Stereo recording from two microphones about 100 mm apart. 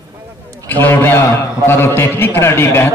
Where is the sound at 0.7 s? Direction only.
20° left (ahead or behind).